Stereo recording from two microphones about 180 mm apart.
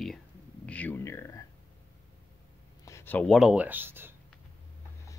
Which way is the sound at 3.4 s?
5° right (ahead or behind).